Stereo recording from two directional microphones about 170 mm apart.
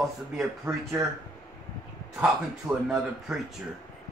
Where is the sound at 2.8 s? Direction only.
5° right (ahead or behind).